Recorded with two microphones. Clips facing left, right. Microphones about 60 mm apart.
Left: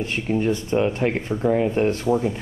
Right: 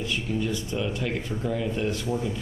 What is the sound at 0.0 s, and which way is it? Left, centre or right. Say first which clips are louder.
Speech: left 6 dB; left.